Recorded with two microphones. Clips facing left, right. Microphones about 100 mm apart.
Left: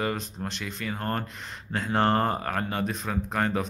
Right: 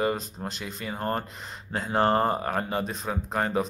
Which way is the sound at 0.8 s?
15° right (ahead or behind).